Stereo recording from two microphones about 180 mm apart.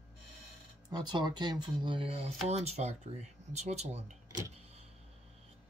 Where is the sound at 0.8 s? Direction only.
25° right (ahead or behind).